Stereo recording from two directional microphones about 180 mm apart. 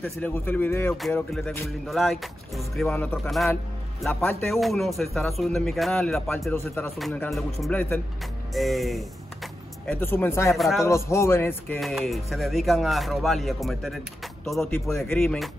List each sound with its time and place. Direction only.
0.0 s a man's voice: 10° left (ahead or behind)
7.0 s a man's voice: centre (ahead or behind)
10.5 s a man's voice: centre (ahead or behind)
10.8 s speech: 15° left (ahead or behind)
11.8 s a man's voice: centre (ahead or behind)